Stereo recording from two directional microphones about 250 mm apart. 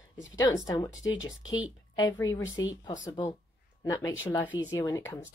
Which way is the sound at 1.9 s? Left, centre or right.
Centre.